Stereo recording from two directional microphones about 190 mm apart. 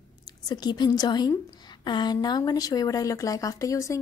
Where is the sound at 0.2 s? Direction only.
20° left (ahead or behind).